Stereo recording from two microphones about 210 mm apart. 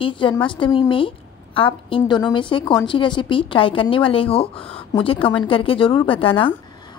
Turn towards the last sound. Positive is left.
turn(degrees=25)  # may be behind; listen again after turning